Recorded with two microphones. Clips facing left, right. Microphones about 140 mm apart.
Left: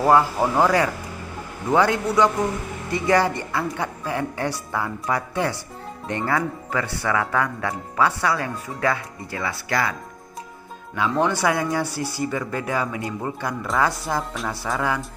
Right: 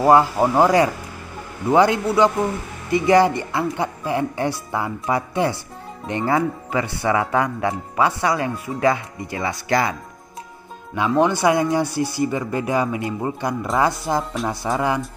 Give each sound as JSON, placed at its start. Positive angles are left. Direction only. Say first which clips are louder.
{"t": 0.0, "sound": "speech", "louder": "right 3 dB", "side_deg": -15}
{"t": 1.7, "sound": "speech", "louder": "right 3 dB", "side_deg": -15}
{"t": 11.0, "sound": "speech", "louder": "right 3 dB", "side_deg": -15}